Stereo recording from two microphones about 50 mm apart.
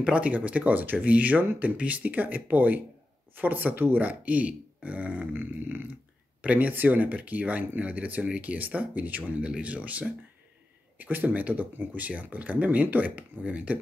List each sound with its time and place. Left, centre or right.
0.0 s speech: right
5.3 s speech: right
6.4 s speech: right
6.7 s speech: right